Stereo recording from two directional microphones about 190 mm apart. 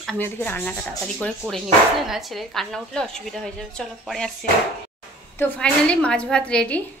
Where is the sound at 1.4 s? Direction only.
15° right (ahead or behind).